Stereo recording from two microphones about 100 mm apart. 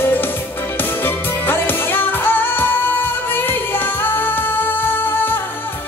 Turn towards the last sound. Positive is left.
turn(degrees=20)  # may be behind; listen again after turning